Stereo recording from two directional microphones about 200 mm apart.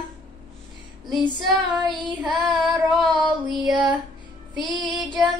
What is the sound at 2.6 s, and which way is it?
Child singing, centre (ahead or behind).